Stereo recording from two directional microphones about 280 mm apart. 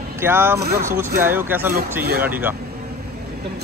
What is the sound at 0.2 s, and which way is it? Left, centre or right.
Speech, centre.